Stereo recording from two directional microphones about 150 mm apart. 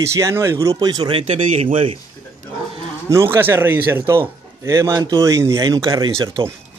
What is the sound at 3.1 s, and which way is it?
A man's voice, 15° right (ahead or behind).